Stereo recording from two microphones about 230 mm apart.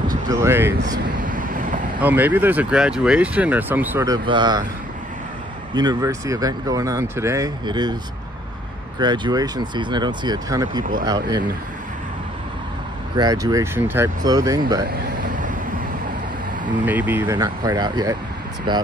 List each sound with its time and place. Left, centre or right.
0.1 s speech: centre
1.3 s vehicle: right
2.0 s speech: centre
5.8 s speech: centre
9.0 s speech: centre
13.1 s speech: centre
14.9 s a sound: right
16.8 s speech: centre